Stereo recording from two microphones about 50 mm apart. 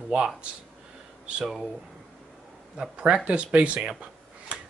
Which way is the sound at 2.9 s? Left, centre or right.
Right.